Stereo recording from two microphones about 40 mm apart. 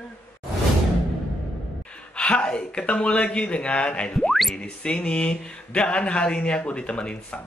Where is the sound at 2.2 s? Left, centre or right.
Left.